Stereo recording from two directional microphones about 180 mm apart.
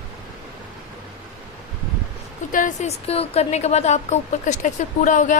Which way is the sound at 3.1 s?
35° left (ahead or behind).